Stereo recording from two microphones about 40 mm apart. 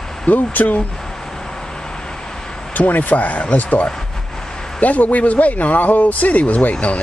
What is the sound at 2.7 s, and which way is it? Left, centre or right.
Speech, left.